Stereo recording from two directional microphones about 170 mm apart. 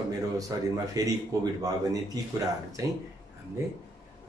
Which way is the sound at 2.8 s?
20° right (ahead or behind).